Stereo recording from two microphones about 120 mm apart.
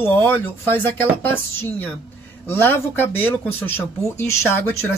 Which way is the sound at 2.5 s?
15° left (ahead or behind).